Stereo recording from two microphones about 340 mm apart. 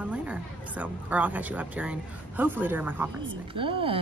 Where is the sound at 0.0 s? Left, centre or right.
Centre.